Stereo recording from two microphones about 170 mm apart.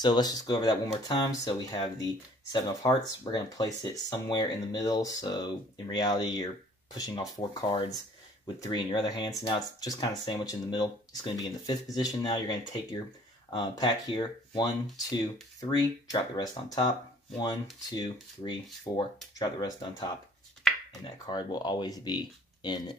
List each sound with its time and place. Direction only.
0.0 s speech: 25° left (ahead or behind)